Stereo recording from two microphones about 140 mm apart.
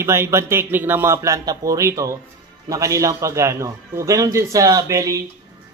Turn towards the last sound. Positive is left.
turn(degrees=-25)  # may be behind; listen again after turning